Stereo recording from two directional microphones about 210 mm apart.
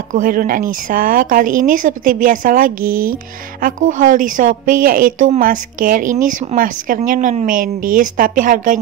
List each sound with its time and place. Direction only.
0.1 s speech: 40° right (ahead or behind)